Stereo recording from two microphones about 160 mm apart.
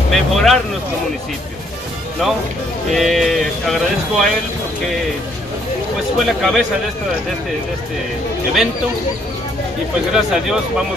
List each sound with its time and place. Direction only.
0.1 s speech: centre (ahead or behind)
2.9 s speech: centre (ahead or behind)
6.1 s speech: centre (ahead or behind)
10.1 s speech: 5° right (ahead or behind)